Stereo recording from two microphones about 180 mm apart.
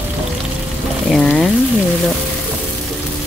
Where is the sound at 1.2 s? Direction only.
5° left (ahead or behind).